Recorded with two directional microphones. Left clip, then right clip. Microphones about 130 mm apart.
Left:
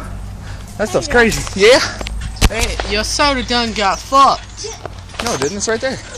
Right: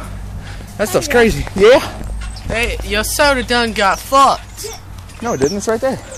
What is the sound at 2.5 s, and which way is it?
Speech, 15° right (ahead or behind).